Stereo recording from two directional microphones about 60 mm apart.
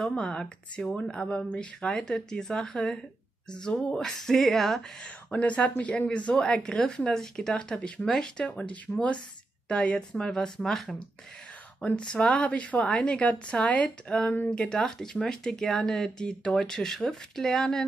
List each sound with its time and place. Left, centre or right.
0.1 s speech: centre
5.0 s speech: left; by 11.0 s centre
11.8 s speech: centre
14.3 s speech: left
14.6 s speech: centre